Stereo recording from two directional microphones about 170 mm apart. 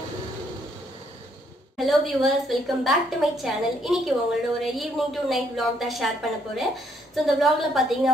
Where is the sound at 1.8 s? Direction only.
Centre (ahead or behind).